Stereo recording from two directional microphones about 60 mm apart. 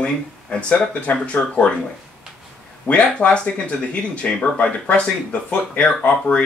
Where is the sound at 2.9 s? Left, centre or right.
Centre.